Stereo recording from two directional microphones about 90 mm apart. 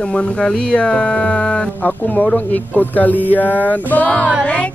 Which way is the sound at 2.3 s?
20° left (ahead or behind).